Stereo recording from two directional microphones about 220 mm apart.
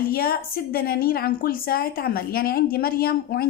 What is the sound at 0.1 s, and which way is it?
A woman's voice, 45° left (ahead or behind).